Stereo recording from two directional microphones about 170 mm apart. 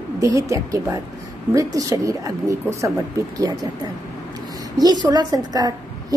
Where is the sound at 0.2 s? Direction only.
20° right (ahead or behind).